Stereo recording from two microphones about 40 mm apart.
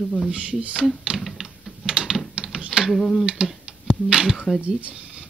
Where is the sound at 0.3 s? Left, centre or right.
Right.